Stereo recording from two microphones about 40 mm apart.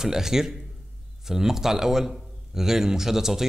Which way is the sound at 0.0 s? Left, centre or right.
Centre.